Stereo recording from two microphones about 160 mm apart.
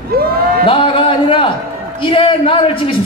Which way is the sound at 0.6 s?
35° left (ahead or behind).